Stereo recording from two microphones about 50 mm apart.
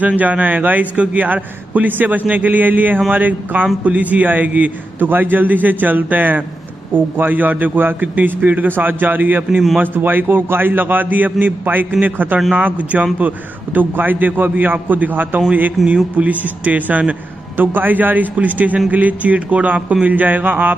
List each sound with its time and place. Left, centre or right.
0.2 s a man's voice: right
15.8 s speech: centre
16.2 s a man's voice: right